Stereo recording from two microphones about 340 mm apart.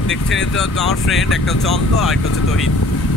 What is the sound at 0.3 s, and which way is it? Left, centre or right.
Speech, centre.